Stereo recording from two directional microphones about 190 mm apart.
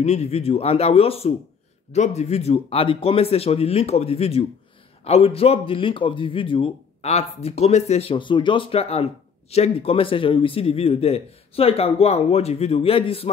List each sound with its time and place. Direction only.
0.0 s speech: 35° left (ahead or behind)